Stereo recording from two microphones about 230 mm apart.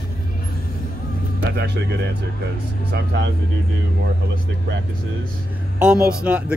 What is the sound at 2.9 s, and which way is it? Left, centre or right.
Speech, right.